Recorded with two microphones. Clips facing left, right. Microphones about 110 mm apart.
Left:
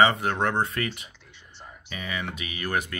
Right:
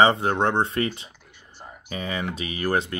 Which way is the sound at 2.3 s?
35° right (ahead or behind).